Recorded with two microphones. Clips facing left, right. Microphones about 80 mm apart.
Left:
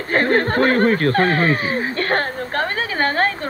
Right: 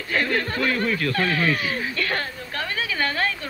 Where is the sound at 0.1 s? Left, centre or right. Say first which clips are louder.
Left 7 dB; left.